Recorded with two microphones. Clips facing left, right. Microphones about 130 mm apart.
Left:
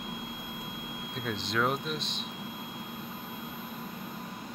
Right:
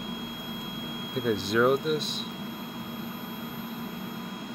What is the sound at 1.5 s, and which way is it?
Speech, 5° right (ahead or behind).